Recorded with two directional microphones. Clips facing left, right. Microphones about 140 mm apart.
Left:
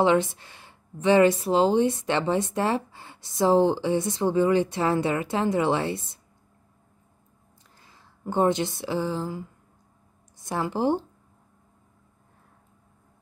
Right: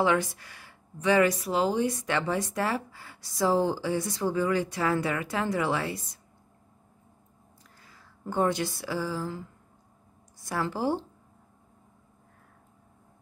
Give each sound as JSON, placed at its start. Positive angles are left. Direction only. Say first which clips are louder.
{"t": 0.0, "sound": "speech", "louder": "left 4 dB", "side_deg": 25}
{"t": 7.8, "sound": "speech", "louder": "left 3 dB", "side_deg": 25}